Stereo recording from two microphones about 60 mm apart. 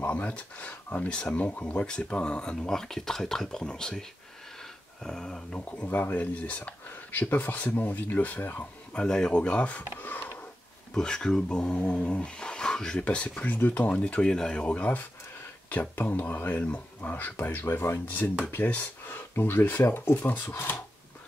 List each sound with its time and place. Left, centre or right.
0.1 s speech: left
5.0 s speech: centre
5.9 s speech: left
8.9 s speech: centre; by 10.2 s left
11.0 s speech: centre
17.1 s speech: left